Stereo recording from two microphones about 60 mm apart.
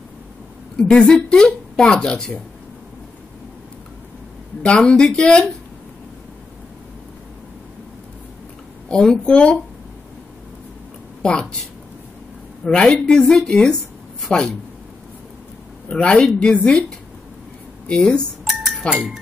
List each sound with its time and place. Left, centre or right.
1.1 s a woman's voice: centre
4.6 s a woman's voice: centre
8.8 s a woman's voice: centre
11.2 s a woman's voice: centre
12.6 s a woman's voice: centre
15.9 s a woman's voice: centre
17.8 s a woman's voice: centre
18.4 s music: centre